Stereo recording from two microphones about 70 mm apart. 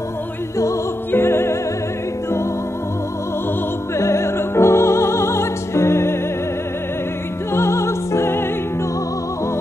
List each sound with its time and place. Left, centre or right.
1.1 s music: left
3.9 s music: left
7.5 s music: left